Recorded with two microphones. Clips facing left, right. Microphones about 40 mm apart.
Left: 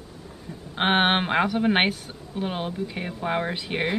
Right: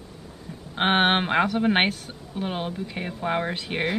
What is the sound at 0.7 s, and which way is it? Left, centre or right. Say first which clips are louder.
Speech: even; centre.